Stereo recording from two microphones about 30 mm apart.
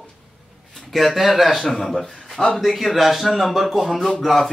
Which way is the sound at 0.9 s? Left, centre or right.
Centre.